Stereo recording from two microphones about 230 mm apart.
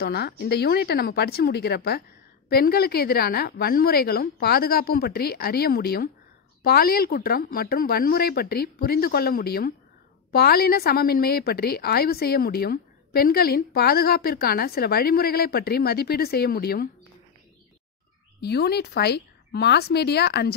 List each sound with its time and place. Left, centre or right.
0.0 s a woman's voice: left
18.4 s a woman's voice: left